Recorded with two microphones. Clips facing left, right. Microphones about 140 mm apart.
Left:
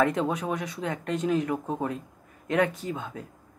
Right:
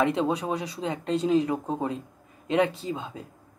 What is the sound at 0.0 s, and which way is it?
Speech, 25° right (ahead or behind).